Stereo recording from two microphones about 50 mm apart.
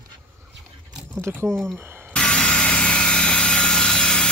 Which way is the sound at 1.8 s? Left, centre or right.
Right.